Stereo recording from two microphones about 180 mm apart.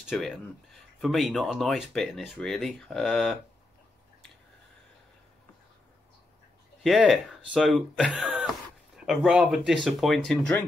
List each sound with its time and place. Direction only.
0.0 s speech: centre (ahead or behind)
6.8 s speech: centre (ahead or behind)